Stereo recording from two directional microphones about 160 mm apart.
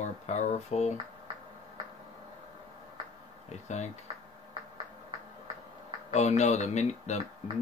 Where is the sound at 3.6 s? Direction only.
45° left (ahead or behind).